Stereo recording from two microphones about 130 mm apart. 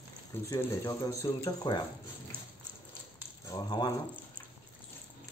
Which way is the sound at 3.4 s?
30° left (ahead or behind).